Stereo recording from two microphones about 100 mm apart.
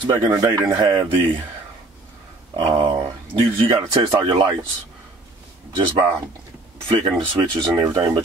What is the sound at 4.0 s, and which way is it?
Speech, 45° right (ahead or behind).